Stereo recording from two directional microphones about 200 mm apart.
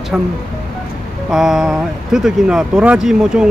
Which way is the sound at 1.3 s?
Centre (ahead or behind).